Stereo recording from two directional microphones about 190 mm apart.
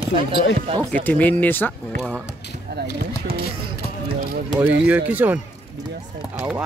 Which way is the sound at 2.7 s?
60° right (ahead or behind).